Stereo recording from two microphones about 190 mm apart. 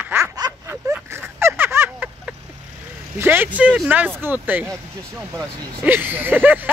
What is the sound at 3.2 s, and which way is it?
Speech, 10° right (ahead or behind).